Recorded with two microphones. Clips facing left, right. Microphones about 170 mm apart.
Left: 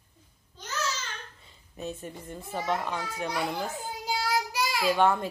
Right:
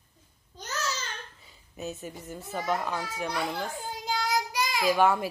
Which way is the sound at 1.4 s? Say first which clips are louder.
Even; 5° right (ahead or behind).